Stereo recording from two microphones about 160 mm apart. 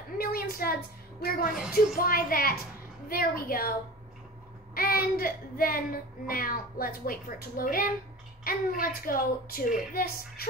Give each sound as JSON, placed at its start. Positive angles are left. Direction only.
{"t": 0.2, "sound": "a sound", "side_deg": 70}
{"t": 1.5, "sound": "speech", "side_deg": -5}
{"t": 2.0, "sound": "speech", "side_deg": 65}
{"t": 4.7, "sound": "speech", "side_deg": 65}